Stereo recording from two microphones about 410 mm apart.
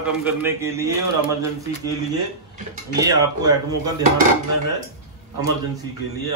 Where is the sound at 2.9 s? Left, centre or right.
Centre.